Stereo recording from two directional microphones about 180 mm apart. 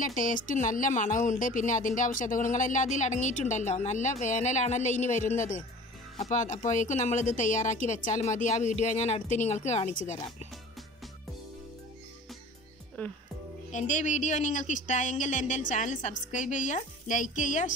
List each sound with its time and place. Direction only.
0.0 s a woman's voice: 50° left (ahead or behind)
13.0 s speech: 10° left (ahead or behind)
13.7 s speech: 40° left (ahead or behind)